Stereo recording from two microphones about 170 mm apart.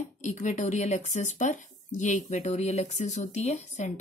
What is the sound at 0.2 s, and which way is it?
Speech, 45° left (ahead or behind).